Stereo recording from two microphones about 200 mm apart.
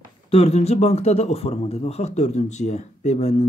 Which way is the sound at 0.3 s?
30° left (ahead or behind).